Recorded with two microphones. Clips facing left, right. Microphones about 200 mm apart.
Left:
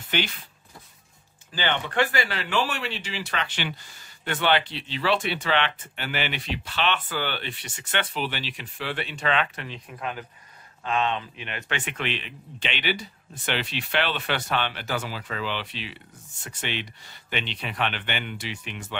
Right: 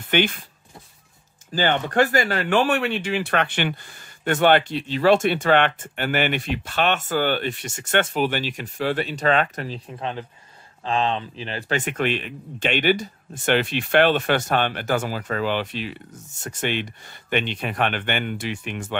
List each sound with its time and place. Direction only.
0.1 s speech: 55° right (ahead or behind)
1.5 s speech: 45° right (ahead or behind)
9.8 s speech: 30° right (ahead or behind); by 18.9 s 50° right (ahead or behind)